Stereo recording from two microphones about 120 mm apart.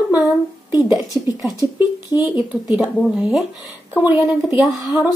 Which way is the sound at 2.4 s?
10° right (ahead or behind).